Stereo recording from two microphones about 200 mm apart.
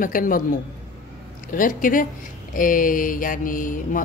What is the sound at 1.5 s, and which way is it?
A woman's voice, 45° left (ahead or behind).